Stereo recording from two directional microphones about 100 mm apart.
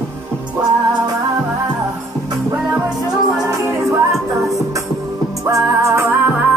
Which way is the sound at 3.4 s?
25° right (ahead or behind).